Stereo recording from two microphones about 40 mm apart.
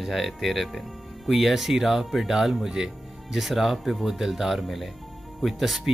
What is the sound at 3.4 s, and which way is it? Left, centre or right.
Speech, centre.